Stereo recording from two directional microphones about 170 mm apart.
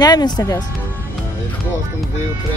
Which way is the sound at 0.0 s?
25° left (ahead or behind).